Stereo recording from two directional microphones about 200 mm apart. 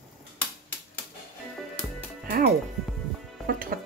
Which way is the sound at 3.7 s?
45° right (ahead or behind).